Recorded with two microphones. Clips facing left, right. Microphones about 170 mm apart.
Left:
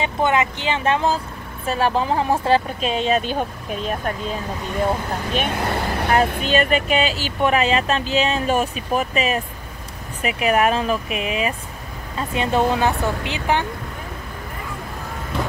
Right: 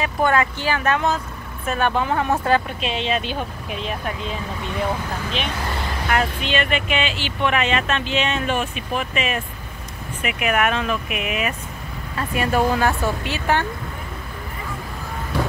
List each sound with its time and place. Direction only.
0.0 s speech: 20° left (ahead or behind)
2.8 s speech: 40° left (ahead or behind); by 13.7 s 15° left (ahead or behind)